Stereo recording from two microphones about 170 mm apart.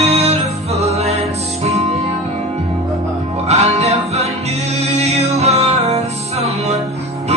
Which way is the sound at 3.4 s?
40° right (ahead or behind).